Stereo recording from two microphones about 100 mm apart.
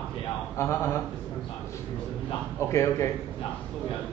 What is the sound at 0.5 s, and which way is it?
Speech, 25° left (ahead or behind).